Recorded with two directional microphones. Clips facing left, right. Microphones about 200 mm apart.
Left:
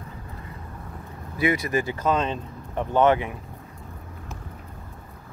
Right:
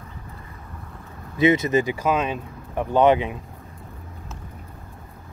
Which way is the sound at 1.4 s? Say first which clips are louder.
Right 5 dB; 20° right (ahead or behind).